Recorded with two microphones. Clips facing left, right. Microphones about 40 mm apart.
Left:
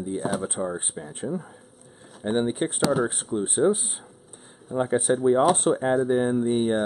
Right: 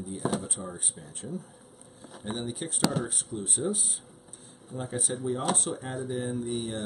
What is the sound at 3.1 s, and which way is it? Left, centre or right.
Speech, left.